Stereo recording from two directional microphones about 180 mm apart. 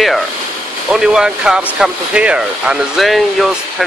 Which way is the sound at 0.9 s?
5° right (ahead or behind).